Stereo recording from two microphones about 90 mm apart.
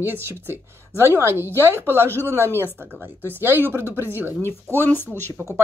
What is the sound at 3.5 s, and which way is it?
A woman's voice, 25° right (ahead or behind).